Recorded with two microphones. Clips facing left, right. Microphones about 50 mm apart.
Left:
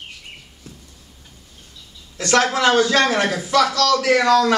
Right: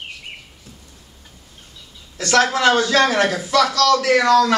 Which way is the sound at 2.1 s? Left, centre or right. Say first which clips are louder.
Right 1 dB; centre.